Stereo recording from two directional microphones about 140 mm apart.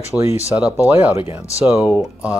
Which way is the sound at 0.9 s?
15° right (ahead or behind).